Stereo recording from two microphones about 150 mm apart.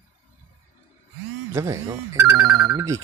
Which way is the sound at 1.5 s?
20° right (ahead or behind).